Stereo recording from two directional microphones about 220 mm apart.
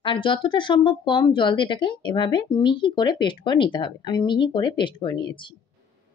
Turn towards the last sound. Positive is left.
turn(degrees=20)  # may be behind; listen again after turning